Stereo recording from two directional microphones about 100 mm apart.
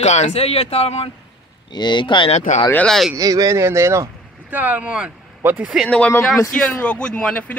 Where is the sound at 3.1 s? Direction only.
40° right (ahead or behind).